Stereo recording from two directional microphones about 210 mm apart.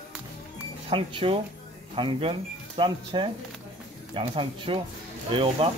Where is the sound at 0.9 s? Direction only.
25° right (ahead or behind).